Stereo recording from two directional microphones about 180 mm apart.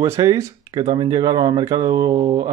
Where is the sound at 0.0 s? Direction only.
15° right (ahead or behind).